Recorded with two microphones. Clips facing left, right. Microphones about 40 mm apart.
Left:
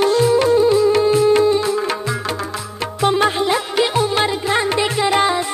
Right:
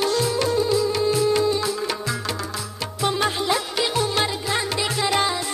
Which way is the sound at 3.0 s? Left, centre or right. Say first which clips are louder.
Left 7 dB; left.